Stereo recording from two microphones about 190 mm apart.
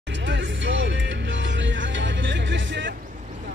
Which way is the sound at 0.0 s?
70° right (ahead or behind).